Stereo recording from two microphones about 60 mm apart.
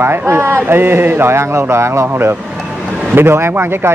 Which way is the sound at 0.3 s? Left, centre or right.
Right.